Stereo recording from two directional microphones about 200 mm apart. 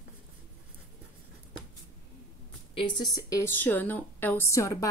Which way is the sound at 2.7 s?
20° left (ahead or behind).